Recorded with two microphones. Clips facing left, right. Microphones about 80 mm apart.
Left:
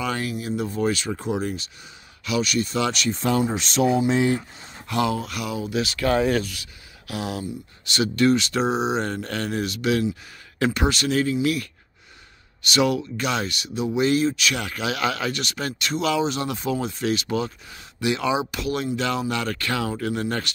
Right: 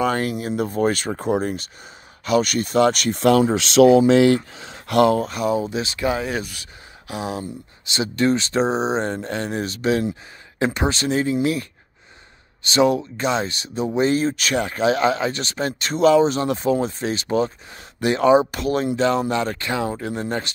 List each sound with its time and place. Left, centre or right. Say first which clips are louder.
0.0 s speech: right 6 dB; right
4.6 s speech: right 7 dB; right
5.3 s speech: right 5 dB; right
12.6 s speech: right 4 dB; right